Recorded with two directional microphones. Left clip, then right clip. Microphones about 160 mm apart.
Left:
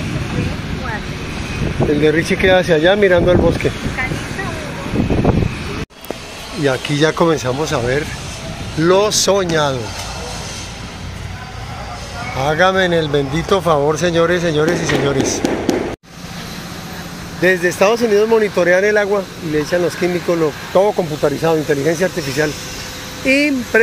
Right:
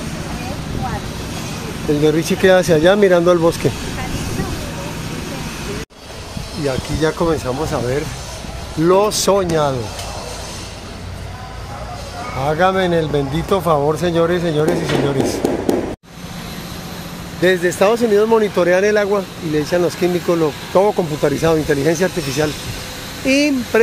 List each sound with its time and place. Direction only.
2.0 s speech: 15° right (ahead or behind)
6.6 s speech: 35° left (ahead or behind)
7.4 s speech: 15° left (ahead or behind)
8.8 s speech: 10° right (ahead or behind)
12.4 s speech: centre (ahead or behind)
17.4 s speech: 5° right (ahead or behind); by 22.5 s 20° right (ahead or behind)
23.2 s speech: 10° right (ahead or behind)